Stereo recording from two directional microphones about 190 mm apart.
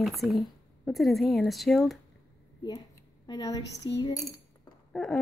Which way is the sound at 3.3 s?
20° left (ahead or behind).